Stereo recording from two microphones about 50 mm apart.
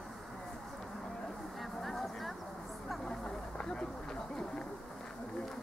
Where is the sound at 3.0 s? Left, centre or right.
Centre.